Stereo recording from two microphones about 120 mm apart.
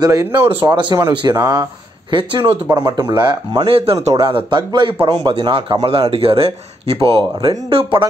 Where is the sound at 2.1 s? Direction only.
45° right (ahead or behind).